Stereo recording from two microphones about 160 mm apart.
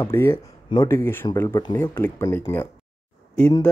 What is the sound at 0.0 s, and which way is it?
Speech, 15° left (ahead or behind).